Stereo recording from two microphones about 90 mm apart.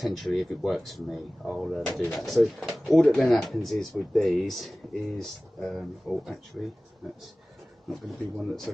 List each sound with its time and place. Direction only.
0.0 s speech: centre (ahead or behind)
1.9 s speech: 20° left (ahead or behind)
2.1 s speech: centre (ahead or behind)
7.9 s speech: centre (ahead or behind)